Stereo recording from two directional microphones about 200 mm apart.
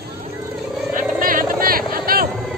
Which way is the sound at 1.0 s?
45° right (ahead or behind).